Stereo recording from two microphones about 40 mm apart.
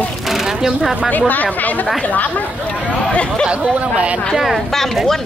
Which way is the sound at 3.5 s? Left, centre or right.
Right.